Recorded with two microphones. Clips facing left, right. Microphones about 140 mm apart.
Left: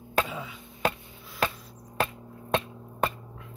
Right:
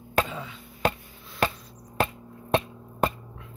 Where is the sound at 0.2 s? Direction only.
5° left (ahead or behind).